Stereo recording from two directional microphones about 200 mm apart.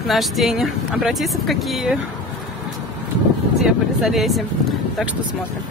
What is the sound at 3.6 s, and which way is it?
Speech, centre (ahead or behind).